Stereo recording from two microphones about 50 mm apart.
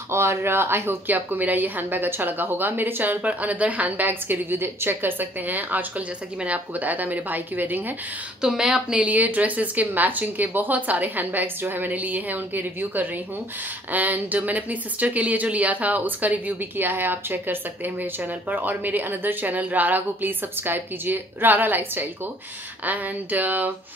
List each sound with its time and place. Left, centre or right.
0.1 s speech: right
8.4 s a woman's voice: centre
8.9 s speech: right